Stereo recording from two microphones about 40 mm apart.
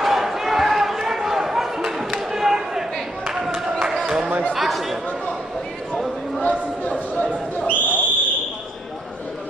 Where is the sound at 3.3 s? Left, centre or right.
Centre.